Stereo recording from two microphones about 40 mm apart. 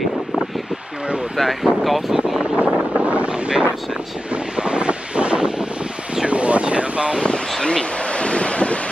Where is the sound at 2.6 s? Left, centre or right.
Right.